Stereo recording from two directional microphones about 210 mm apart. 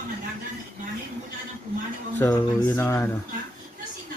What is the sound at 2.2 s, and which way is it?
Speech, 10° left (ahead or behind).